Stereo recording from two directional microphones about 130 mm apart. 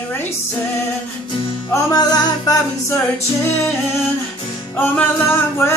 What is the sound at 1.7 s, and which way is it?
Music, 30° left (ahead or behind).